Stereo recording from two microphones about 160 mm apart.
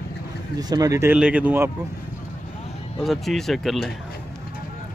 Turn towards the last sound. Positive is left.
turn(degrees=0)  # may be behind; listen again after turning